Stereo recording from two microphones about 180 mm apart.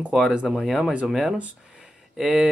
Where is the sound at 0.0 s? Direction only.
5° right (ahead or behind).